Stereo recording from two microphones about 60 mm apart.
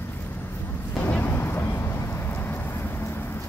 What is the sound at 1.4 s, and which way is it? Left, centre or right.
Vehicle, left.